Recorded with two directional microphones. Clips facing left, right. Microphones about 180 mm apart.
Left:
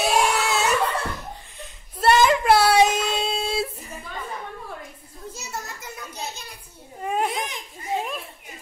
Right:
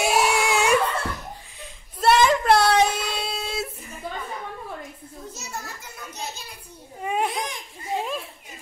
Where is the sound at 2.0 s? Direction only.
5° left (ahead or behind).